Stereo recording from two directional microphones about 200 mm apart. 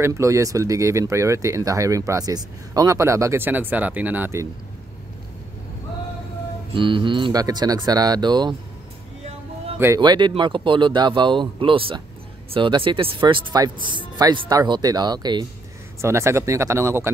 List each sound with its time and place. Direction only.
0.0 s speech: 15° right (ahead or behind)
6.7 s speech: 25° right (ahead or behind)
9.8 s speech: 15° right (ahead or behind)